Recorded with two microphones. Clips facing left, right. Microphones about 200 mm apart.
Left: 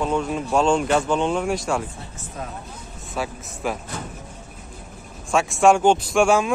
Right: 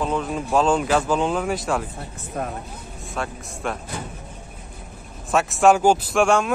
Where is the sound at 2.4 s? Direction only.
55° right (ahead or behind).